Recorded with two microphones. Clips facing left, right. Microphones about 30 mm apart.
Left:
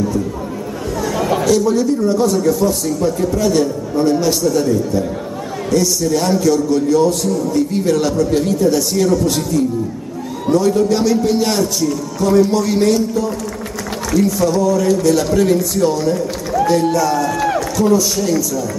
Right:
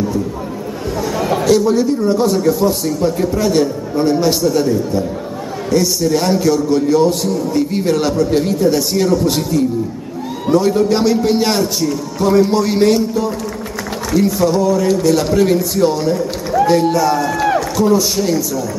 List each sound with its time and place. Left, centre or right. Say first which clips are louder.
1.4 s a man's voice: right 3 dB; right